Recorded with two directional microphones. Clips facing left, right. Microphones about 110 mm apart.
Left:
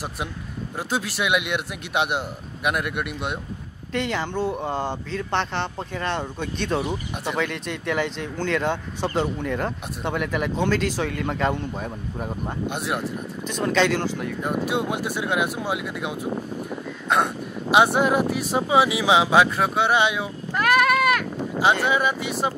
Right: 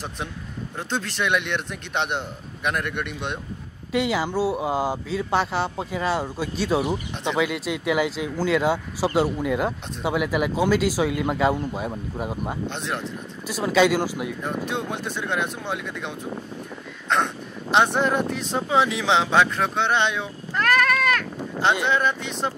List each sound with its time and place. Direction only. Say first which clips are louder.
0.7 s a man's voice: left 1 dB; 10° left (ahead or behind)
3.9 s speech: right 3 dB; 5° right (ahead or behind)
12.6 s a man's voice: left 2 dB; 10° left (ahead or behind)
13.5 s speech: right 2 dB; 5° right (ahead or behind)
14.4 s a man's voice: left 6 dB; 10° left (ahead or behind)